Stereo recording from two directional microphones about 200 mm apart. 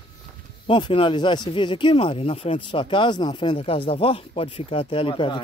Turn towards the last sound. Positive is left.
turn(degrees=25)  # may be behind; listen again after turning